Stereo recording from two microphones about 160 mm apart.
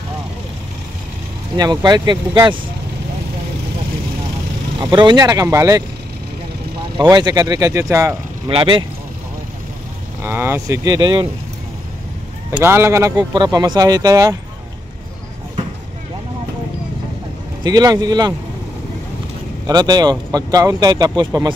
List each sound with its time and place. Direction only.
1.6 s speech: 25° right (ahead or behind)
4.9 s speech: 25° right (ahead or behind)
7.0 s speech: 25° right (ahead or behind)
8.5 s speech: 35° right (ahead or behind)
10.2 s speech: 15° right (ahead or behind)
12.4 s speech: 15° right (ahead or behind)
17.6 s speech: 25° right (ahead or behind)
19.6 s speech: 25° right (ahead or behind)